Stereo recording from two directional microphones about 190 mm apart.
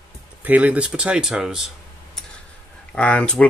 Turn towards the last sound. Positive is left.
turn(degrees=5)  # may be behind; listen again after turning